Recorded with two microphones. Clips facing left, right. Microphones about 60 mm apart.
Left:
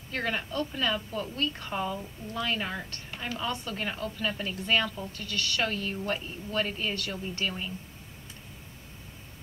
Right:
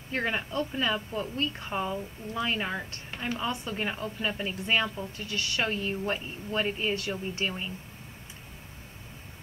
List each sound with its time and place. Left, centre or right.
0.1 s a woman's voice: centre